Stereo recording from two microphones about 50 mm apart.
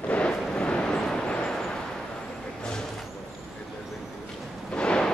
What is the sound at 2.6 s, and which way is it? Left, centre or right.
Vehicle, centre.